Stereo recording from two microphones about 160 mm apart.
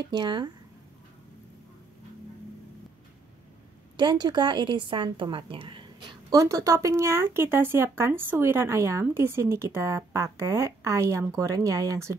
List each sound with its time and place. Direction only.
0.0 s a woman's voice: 30° right (ahead or behind)
3.9 s a woman's voice: 25° right (ahead or behind)